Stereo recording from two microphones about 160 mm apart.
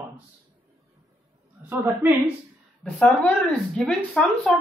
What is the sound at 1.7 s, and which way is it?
Speech, 15° right (ahead or behind).